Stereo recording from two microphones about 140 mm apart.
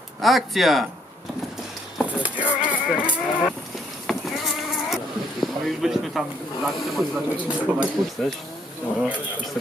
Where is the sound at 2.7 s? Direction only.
10° right (ahead or behind).